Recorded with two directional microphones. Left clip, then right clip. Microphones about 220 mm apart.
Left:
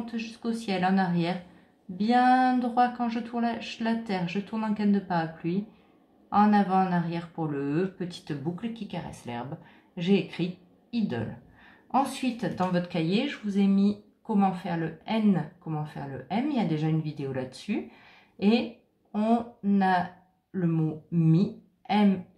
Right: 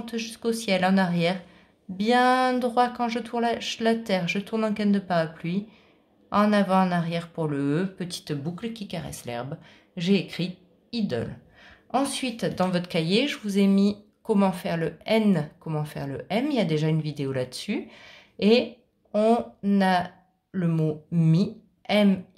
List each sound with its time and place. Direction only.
0.0 s a woman's voice: 50° right (ahead or behind)